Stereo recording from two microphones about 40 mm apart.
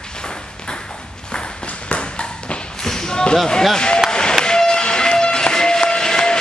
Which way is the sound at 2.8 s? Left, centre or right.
Centre.